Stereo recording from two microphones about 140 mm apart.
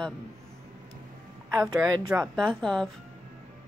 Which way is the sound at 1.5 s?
25° right (ahead or behind).